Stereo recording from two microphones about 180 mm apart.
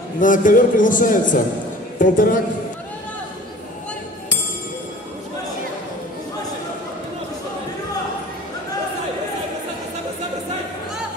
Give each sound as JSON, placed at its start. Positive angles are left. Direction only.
{"t": 0.2, "sound": "a man's voice", "side_deg": 45}